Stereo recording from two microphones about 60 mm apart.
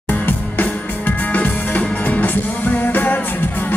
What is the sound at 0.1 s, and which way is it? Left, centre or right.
Music, left.